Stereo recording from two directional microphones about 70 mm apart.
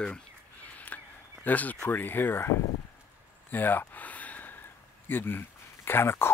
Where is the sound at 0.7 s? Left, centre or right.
Left.